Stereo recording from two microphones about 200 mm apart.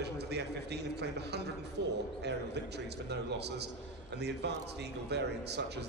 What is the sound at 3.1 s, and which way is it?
Speech, 55° right (ahead or behind).